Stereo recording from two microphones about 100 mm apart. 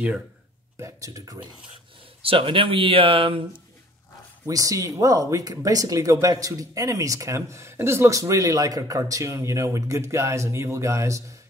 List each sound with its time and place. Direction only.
0.7 s speech: 30° right (ahead or behind)
2.2 s speech: 60° right (ahead or behind)
4.5 s speech: 35° right (ahead or behind)